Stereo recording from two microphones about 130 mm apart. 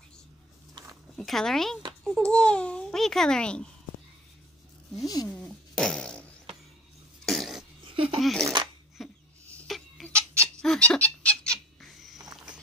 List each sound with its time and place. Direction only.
1.1 s a child's voice: 5° left (ahead or behind)
5.0 s speech: 30° left (ahead or behind)
5.3 s fart: 5° left (ahead or behind)
7.2 s cough: centre (ahead or behind)
7.8 s a sound: 40° right (ahead or behind)
8.2 s speech: centre (ahead or behind)
9.0 s dog: centre (ahead or behind)
9.7 s tick-tock: 5° left (ahead or behind)
10.4 s a sound: 5° left (ahead or behind)